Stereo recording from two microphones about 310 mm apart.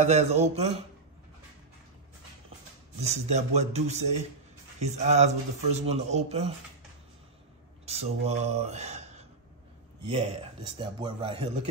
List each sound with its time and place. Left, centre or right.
0.0 s speech: right
3.0 s speech: right
7.8 s speech: centre
10.8 s speech: centre